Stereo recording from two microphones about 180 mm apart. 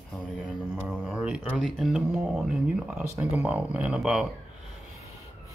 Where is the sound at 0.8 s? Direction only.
10° right (ahead or behind).